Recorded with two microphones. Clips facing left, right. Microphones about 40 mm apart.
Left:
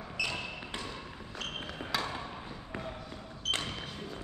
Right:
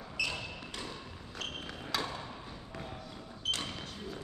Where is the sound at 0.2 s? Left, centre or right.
Centre.